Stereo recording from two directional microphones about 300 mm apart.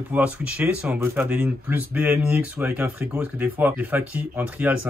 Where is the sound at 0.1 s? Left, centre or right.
Centre.